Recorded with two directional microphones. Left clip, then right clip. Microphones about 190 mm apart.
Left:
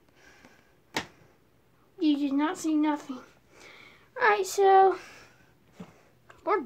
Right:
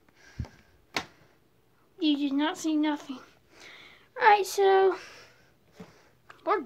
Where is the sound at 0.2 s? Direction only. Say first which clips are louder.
Right 5 dB; 15° left (ahead or behind).